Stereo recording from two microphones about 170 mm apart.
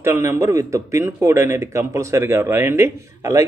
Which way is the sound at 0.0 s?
15° right (ahead or behind).